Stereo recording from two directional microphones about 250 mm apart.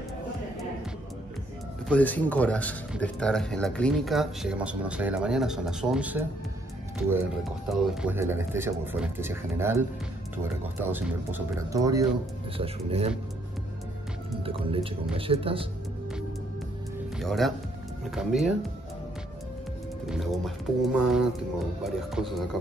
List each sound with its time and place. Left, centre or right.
1.9 s speech: centre
7.7 s speech: centre; by 13.1 s right
14.4 s speech: right
17.2 s speech: centre
20.1 s speech: centre